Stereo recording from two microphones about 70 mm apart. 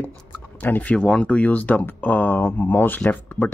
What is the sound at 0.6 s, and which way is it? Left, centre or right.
Speech, left.